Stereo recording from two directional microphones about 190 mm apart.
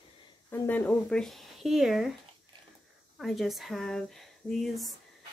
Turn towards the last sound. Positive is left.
turn(degrees=0)  # may be behind; listen again after turning